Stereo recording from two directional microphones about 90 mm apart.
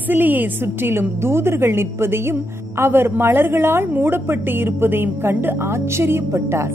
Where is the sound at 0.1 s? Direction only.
20° right (ahead or behind).